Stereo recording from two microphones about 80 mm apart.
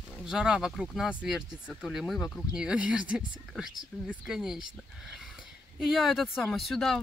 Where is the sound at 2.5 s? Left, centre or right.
Centre.